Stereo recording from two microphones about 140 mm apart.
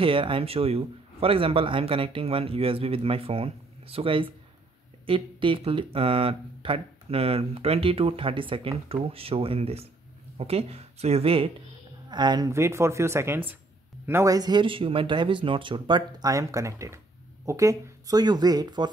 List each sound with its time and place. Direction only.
0.0 s speech: 40° right (ahead or behind)
12.1 s speech: 30° right (ahead or behind)